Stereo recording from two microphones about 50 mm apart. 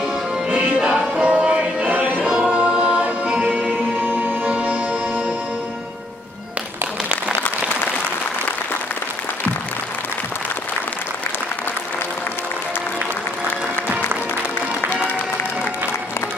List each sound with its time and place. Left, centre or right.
0.5 s music: right
1.9 s choir: right
2.2 s choir: centre
4.0 s music: right
4.5 s music: right